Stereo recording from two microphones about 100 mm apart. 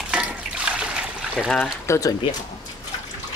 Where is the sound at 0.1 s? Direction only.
10° right (ahead or behind).